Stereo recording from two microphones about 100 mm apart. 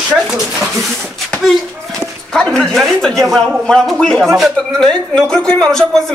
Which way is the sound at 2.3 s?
5° left (ahead or behind).